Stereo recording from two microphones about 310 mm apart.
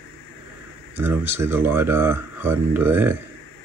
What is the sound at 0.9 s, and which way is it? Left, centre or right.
Speech, centre.